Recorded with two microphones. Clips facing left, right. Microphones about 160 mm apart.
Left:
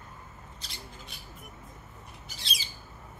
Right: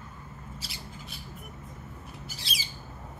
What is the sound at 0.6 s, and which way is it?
Squawk, 5° right (ahead or behind).